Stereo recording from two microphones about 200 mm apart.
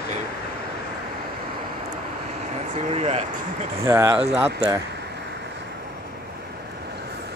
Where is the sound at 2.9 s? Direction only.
30° right (ahead or behind).